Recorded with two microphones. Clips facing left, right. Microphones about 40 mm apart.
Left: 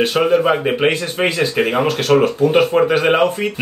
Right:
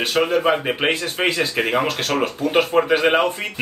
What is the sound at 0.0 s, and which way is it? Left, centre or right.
Speech, centre.